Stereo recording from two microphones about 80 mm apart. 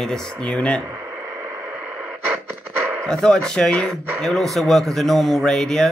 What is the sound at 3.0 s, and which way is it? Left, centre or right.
A man's voice, centre.